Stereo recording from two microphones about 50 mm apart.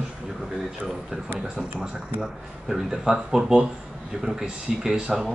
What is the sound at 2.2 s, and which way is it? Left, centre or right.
Speech, centre.